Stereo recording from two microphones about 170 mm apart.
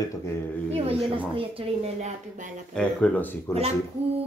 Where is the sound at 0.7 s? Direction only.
35° right (ahead or behind).